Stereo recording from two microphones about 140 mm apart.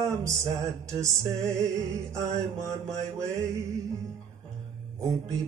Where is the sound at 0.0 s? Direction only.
20° right (ahead or behind).